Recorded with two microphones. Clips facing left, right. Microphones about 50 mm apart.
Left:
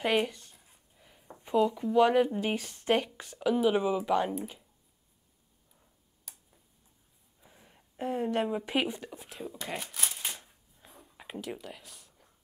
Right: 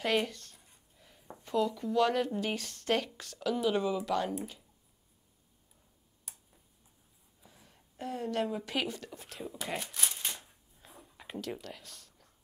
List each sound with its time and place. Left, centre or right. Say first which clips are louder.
0.0 s a sound: left 3 dB; centre
1.4 s speech: left 4 dB; centre
7.4 s speech: left 2 dB; centre
9.2 s speech: left 1 dB; centre
9.6 s shuffling cards: right 1 dB; centre
11.6 s a sound: left 1 dB; centre